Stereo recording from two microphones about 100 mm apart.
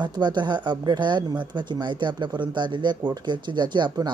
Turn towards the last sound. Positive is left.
turn(degrees=-50)  # may be behind; listen again after turning